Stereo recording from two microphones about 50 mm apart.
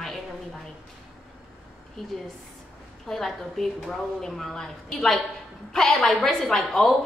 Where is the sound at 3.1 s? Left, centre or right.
Centre.